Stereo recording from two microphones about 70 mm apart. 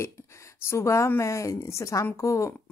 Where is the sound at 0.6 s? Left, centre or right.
Left.